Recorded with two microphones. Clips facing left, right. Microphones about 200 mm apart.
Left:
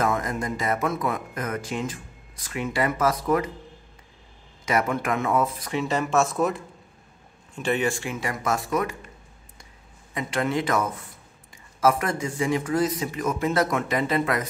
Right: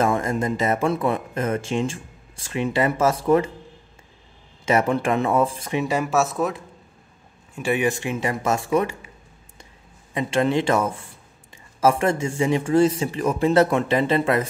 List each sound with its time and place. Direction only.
0.0 s speech: 25° right (ahead or behind)
4.6 s speech: 30° right (ahead or behind)
5.7 s speech: 15° right (ahead or behind)
10.1 s speech: 25° right (ahead or behind)